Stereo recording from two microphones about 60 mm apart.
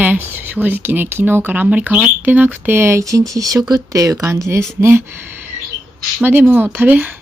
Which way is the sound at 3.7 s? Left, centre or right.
Right.